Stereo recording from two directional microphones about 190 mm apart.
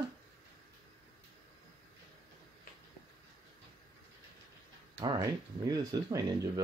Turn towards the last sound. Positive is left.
turn(degrees=-20)  # may be behind; listen again after turning